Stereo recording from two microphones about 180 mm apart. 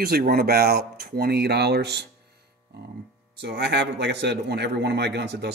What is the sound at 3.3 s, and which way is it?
A man's voice, 70° right (ahead or behind).